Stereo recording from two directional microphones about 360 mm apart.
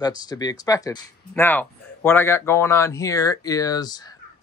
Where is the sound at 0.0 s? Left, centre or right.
Centre.